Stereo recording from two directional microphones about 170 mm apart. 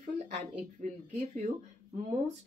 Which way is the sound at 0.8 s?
45° right (ahead or behind).